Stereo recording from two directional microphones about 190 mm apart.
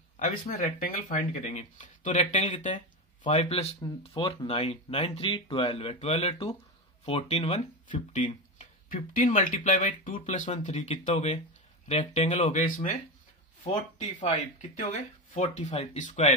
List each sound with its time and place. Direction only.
0.2 s speech: 40° left (ahead or behind)
3.3 s speech: 30° left (ahead or behind)
14.2 s speech: 35° left (ahead or behind)